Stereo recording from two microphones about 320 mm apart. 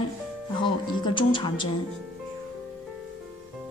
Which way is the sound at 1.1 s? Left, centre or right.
Centre.